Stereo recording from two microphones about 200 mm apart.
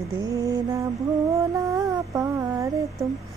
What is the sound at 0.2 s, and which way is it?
Mantra, 15° right (ahead or behind).